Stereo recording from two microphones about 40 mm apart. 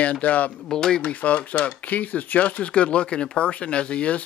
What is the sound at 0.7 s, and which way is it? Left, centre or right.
Speech, centre.